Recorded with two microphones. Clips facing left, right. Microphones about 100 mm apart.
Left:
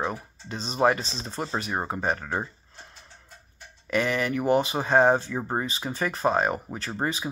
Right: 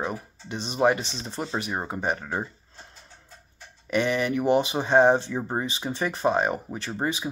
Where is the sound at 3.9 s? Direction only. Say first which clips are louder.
Right 1 dB; 20° right (ahead or behind).